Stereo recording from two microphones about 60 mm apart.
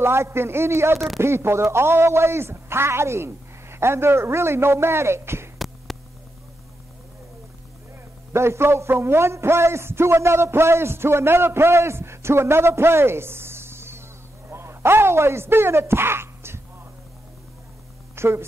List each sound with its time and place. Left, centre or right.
0.0 s a man's voice: right
0.9 s speech: centre
1.2 s a man's voice: right
5.9 s a sound: centre
8.3 s a man's voice: right
18.1 s a sound: right